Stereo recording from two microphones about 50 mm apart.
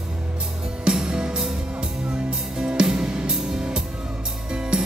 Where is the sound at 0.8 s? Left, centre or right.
Centre.